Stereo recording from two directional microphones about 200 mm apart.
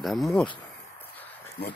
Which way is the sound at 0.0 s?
Centre (ahead or behind).